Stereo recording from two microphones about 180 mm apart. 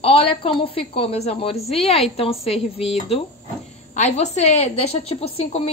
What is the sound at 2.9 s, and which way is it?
Speech, 35° left (ahead or behind).